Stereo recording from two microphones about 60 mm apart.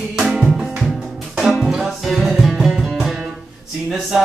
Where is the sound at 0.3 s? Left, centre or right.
Centre.